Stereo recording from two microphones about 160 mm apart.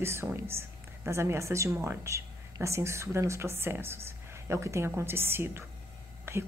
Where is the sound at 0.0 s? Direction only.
15° right (ahead or behind).